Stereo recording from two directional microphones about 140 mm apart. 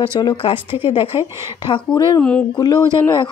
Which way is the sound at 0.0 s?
35° left (ahead or behind).